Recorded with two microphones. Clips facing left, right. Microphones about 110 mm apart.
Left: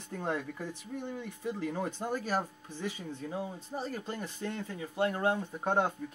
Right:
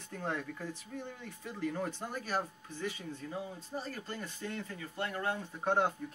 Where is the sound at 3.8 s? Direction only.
25° left (ahead or behind).